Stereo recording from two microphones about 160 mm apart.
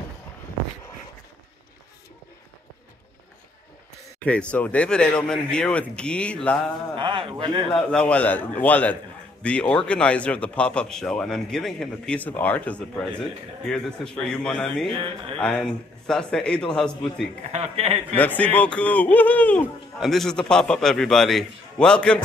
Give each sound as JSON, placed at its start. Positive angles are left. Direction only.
{"t": 4.2, "sound": "speech", "side_deg": 10}
{"t": 7.0, "sound": "a man's voice", "side_deg": -30}
{"t": 7.7, "sound": "speech", "side_deg": 5}
{"t": 17.5, "sound": "a man's voice", "side_deg": -40}
{"t": 18.1, "sound": "speech", "side_deg": 10}